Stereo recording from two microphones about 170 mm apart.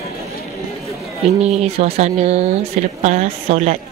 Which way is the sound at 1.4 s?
40° right (ahead or behind).